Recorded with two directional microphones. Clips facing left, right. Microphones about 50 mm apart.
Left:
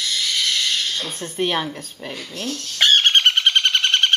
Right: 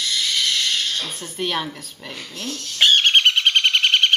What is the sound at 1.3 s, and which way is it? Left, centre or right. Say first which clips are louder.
Speech: left 3 dB; centre.